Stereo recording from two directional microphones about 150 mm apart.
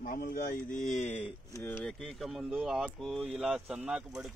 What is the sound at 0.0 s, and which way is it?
Speech, 70° left (ahead or behind).